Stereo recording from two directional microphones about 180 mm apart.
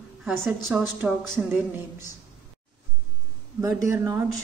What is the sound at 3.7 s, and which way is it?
Speech, 15° right (ahead or behind).